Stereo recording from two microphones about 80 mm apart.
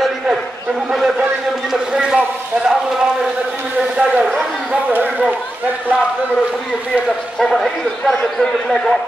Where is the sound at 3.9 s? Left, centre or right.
Centre.